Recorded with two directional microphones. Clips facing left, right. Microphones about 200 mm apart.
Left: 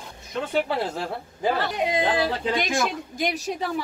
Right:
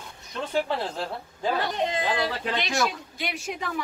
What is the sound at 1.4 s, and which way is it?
Speech, 10° left (ahead or behind).